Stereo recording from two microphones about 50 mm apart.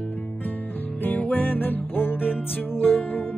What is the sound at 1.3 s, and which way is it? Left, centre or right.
Music, left.